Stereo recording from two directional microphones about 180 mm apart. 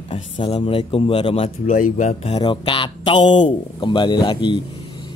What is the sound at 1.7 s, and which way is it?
Speech, 45° left (ahead or behind).